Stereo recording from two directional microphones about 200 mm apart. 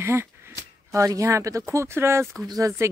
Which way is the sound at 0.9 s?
15° right (ahead or behind).